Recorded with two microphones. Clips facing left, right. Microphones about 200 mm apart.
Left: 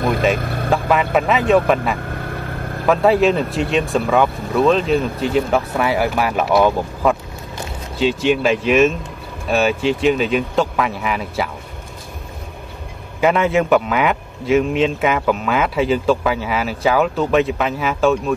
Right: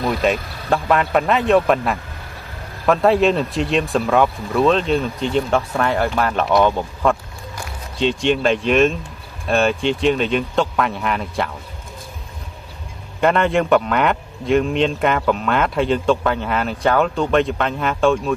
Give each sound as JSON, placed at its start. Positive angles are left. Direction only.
{"t": 0.4, "sound": "vehicle", "side_deg": 55}
{"t": 0.7, "sound": "a man's voice", "side_deg": 0}
{"t": 2.0, "sound": "vehicle", "side_deg": 55}
{"t": 2.9, "sound": "a man's voice", "side_deg": 0}
{"t": 13.2, "sound": "a man's voice", "side_deg": 5}